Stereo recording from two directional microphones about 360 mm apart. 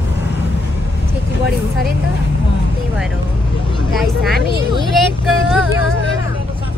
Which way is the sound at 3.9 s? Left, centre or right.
Centre.